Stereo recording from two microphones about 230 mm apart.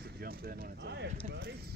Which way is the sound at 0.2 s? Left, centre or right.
Right.